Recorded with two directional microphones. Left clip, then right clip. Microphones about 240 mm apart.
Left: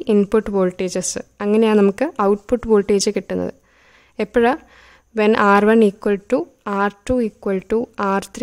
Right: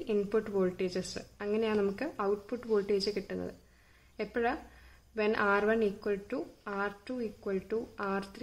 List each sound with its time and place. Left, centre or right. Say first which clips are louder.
0.0 s speech: left 14 dB; left